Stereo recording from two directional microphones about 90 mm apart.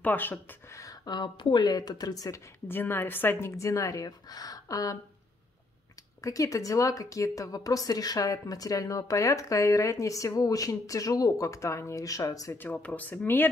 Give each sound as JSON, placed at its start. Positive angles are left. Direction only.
{"t": 0.0, "sound": "speech", "side_deg": 20}
{"t": 1.0, "sound": "speech", "side_deg": 55}
{"t": 2.7, "sound": "a woman's voice", "side_deg": 25}
{"t": 6.2, "sound": "a woman's voice", "side_deg": 35}
{"t": 12.5, "sound": "speech", "side_deg": 15}